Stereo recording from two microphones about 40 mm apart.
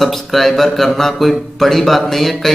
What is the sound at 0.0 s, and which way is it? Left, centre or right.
Speech, centre.